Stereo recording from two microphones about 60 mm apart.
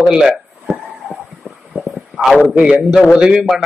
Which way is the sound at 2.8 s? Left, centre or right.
Centre.